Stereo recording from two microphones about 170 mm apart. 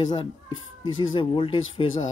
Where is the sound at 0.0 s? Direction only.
25° left (ahead or behind).